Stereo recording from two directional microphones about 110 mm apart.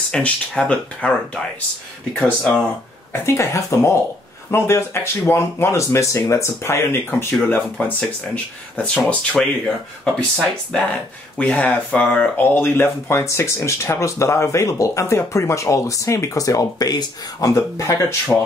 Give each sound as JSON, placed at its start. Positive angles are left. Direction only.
{"t": 0.1, "sound": "speech", "side_deg": 10}
{"t": 3.1, "sound": "speech", "side_deg": 25}
{"t": 18.3, "sound": "speech", "side_deg": 0}